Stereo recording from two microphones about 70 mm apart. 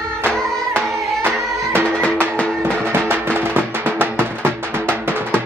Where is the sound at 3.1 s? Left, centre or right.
Right.